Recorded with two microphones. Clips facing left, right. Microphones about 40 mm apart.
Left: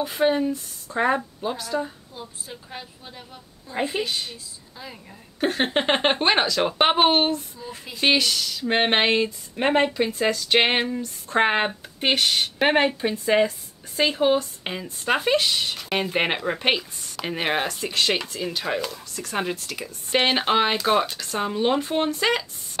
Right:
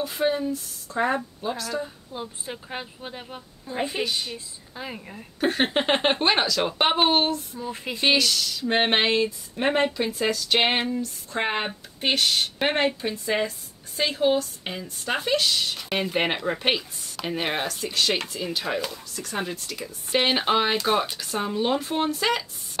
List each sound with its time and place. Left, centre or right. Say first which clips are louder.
0.2 s speech: left 4 dB; left
2.1 s a woman's voice: right 8 dB; right
5.7 s speech: left 1 dB; centre
7.5 s a woman's voice: right 5 dB; right
8.0 s speech: left 1 dB; centre
11.2 s speech: left 7 dB; left
12.0 s speech: left 2 dB; centre
15.7 s speech: left 1 dB; centre
18.3 s speech: left 1 dB; centre
21.1 s speech: left 1 dB; centre
21.4 s speech: left 2 dB; centre